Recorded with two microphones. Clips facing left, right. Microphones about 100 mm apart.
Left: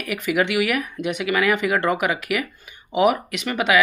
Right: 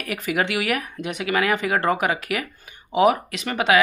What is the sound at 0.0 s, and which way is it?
Speech, 35° right (ahead or behind).